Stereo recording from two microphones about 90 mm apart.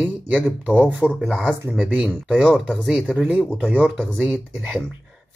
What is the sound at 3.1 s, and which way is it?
Speech, 15° right (ahead or behind).